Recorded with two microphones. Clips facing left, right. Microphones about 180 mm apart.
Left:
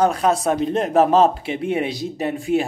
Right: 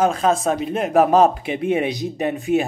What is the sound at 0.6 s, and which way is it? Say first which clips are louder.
Speech: even; 10° right (ahead or behind).